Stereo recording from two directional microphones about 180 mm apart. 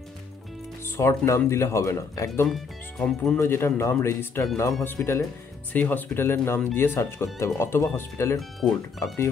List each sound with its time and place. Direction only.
0.9 s speech: 15° left (ahead or behind)
2.4 s speech: centre (ahead or behind)
3.3 s speech: 15° left (ahead or behind)
8.4 s speech: centre (ahead or behind)
9.0 s speech: 15° left (ahead or behind)